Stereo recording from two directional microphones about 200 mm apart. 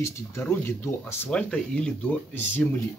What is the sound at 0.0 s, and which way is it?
Speech, 15° left (ahead or behind).